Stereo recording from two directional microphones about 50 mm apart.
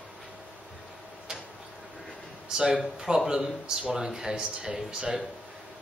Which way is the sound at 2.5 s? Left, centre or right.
Centre.